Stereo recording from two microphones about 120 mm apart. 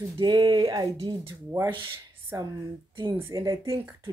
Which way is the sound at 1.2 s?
25° right (ahead or behind).